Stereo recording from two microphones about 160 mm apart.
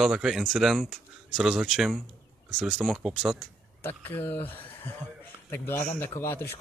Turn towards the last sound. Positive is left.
turn(degrees=15)  # may be behind; listen again after turning